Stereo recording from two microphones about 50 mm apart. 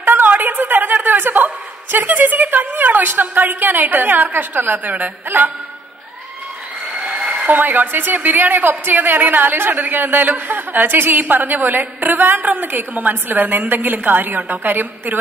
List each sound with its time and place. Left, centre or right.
0.0 s a woman's voice: right
7.2 s a sound: centre
7.4 s a woman's voice: right